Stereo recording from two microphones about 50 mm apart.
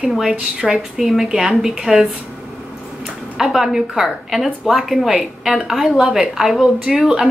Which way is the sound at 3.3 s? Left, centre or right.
Centre.